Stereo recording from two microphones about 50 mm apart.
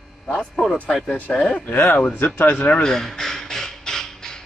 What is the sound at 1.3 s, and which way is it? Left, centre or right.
Speech, centre.